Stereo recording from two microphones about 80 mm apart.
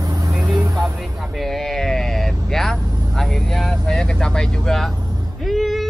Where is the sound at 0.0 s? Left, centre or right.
Right.